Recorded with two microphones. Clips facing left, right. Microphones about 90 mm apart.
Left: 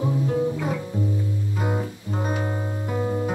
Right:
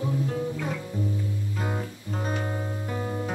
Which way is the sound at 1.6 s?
15° left (ahead or behind).